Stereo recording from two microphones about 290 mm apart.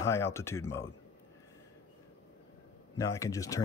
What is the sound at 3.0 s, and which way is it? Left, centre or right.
Speech, centre.